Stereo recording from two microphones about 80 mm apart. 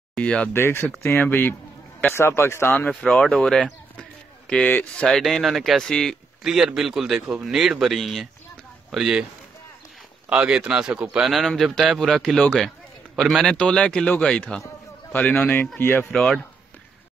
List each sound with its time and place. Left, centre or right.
0.1 s speech: centre
0.5 s a man's voice: left
3.1 s a man's voice: centre
6.4 s speech: centre
10.3 s a man's voice: centre; by 16.1 s left
16.1 s speech: centre